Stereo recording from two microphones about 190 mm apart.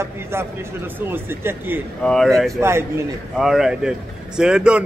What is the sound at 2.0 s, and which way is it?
Speech, centre (ahead or behind).